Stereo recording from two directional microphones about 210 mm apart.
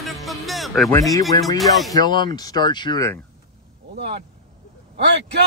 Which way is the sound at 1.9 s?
20° left (ahead or behind).